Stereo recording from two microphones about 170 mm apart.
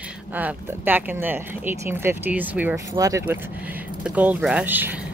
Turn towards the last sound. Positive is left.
turn(degrees=-10)  # may be behind; listen again after turning